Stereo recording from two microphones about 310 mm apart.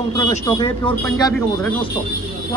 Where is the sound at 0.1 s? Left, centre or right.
Centre.